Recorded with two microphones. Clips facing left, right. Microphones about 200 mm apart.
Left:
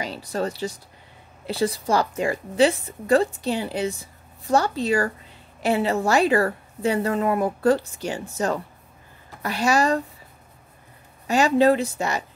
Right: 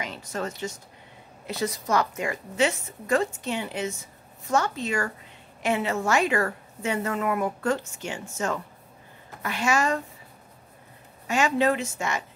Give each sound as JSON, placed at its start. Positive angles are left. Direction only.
{"t": 0.0, "sound": "a woman's voice", "side_deg": 35}
{"t": 11.2, "sound": "a woman's voice", "side_deg": 35}